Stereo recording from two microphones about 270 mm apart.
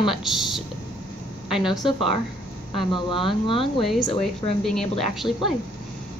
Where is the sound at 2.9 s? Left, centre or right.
Centre.